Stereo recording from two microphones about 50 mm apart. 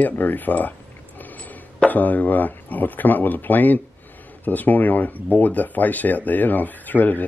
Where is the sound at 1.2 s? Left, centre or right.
Left.